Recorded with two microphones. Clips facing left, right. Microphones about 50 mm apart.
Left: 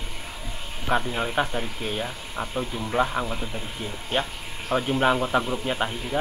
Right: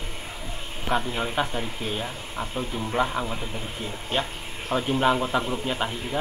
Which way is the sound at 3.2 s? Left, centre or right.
Left.